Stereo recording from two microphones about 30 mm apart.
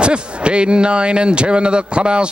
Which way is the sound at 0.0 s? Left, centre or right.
Right.